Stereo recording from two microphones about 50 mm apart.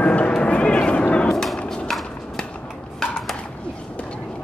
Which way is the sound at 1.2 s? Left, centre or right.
Centre.